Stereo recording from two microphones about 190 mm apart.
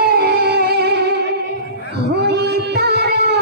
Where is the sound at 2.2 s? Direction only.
60° right (ahead or behind).